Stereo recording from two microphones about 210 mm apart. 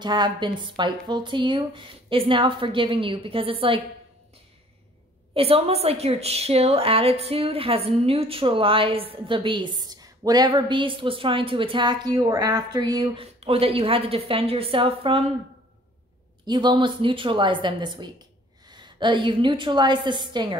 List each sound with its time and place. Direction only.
0.0 s a woman's voice: 20° right (ahead or behind)
5.3 s a woman's voice: 25° right (ahead or behind)
16.4 s a woman's voice: 20° right (ahead or behind)